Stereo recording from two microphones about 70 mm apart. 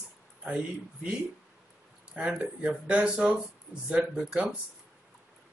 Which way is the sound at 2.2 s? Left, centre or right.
Centre.